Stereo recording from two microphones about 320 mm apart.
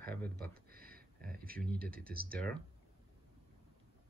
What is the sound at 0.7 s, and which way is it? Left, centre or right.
Speech, right.